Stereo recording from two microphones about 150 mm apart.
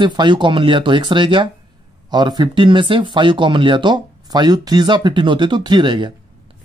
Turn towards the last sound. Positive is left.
turn(degrees=-30)  # may be behind; listen again after turning